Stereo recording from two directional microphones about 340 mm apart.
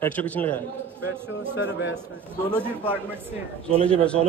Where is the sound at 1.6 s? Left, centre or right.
Left.